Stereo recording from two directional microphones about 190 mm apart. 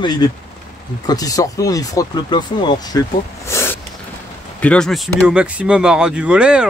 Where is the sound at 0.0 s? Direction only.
20° left (ahead or behind).